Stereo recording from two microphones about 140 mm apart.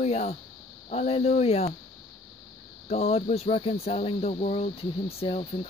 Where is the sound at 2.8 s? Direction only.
50° left (ahead or behind).